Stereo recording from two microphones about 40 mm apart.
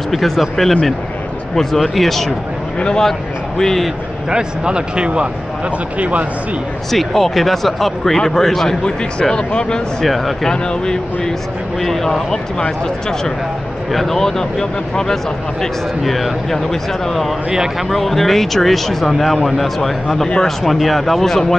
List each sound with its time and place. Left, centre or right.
0.1 s a man's voice: centre
4.3 s speech: right
5.9 s speech: right
6.9 s speech: centre
9.3 s speech: left
10.0 s speech: centre
10.4 s speech: centre
13.9 s speech: centre
16.0 s speech: centre
17.5 s speech: centre
17.8 s speech: centre